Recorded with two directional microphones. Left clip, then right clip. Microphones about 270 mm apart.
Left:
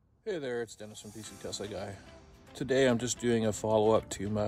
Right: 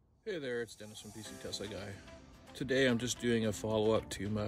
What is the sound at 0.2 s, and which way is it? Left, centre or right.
Speech, centre.